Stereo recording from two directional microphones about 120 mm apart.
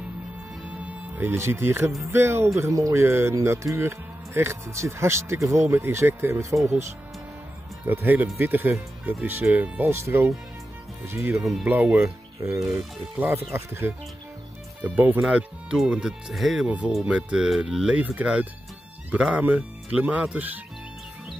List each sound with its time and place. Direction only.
0.8 s speech: 15° right (ahead or behind)
12.4 s speech: 25° right (ahead or behind)
12.6 s speech: 5° right (ahead or behind)
13.3 s speech: 20° right (ahead or behind)